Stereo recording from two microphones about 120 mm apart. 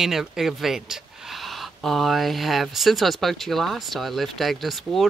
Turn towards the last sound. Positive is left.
turn(degrees=0)  # may be behind; listen again after turning